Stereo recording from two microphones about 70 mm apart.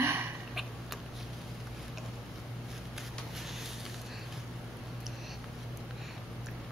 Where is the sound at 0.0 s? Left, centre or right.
Right.